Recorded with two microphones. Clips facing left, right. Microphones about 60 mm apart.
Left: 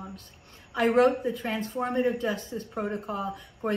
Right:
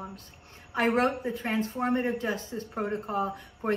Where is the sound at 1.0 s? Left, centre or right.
Right.